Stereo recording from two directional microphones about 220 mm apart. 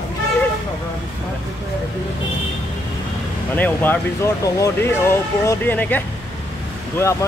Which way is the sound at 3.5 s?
10° left (ahead or behind).